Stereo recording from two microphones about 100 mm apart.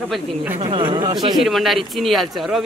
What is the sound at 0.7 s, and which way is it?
Speech, 55° right (ahead or behind).